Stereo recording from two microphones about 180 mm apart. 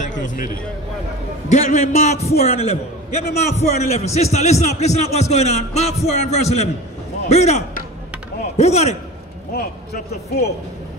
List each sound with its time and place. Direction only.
0.0 s speech: 45° left (ahead or behind)
1.5 s a man's voice: 40° left (ahead or behind)